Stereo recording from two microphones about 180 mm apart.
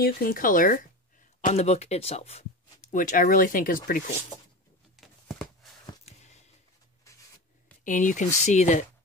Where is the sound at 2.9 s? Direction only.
50° left (ahead or behind).